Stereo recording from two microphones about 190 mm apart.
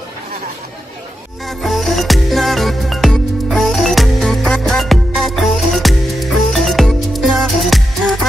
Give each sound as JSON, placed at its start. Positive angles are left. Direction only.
{"t": 1.6, "sound": "music", "side_deg": 0}